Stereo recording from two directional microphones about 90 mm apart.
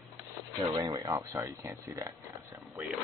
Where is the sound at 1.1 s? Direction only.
30° right (ahead or behind).